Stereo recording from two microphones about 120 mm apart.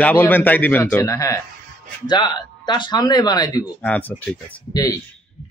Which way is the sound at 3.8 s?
15° left (ahead or behind).